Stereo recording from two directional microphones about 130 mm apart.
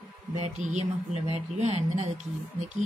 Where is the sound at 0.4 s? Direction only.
60° right (ahead or behind).